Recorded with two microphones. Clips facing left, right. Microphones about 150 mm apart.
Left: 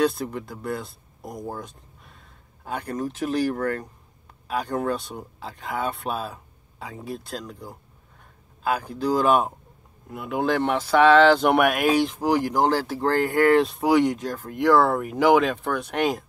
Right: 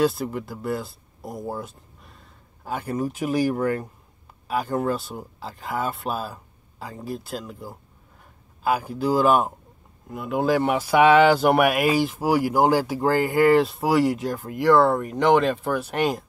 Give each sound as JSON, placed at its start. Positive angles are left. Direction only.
{"t": 0.0, "sound": "speech", "side_deg": -5}